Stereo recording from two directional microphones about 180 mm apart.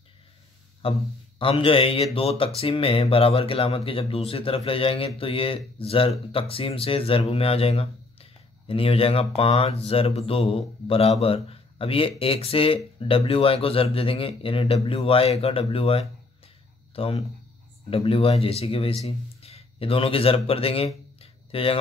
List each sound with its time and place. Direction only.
0.8 s speech: 30° left (ahead or behind)